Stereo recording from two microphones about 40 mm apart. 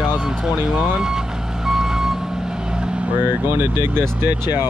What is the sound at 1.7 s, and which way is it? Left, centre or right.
Reversing beeps, centre.